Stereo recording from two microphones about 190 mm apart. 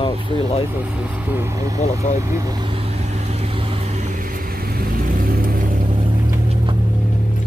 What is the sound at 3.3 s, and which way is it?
Vehicle, 30° right (ahead or behind).